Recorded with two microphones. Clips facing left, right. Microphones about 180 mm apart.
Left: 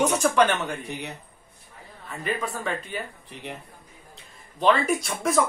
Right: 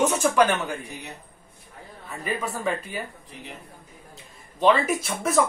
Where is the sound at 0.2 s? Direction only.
10° right (ahead or behind).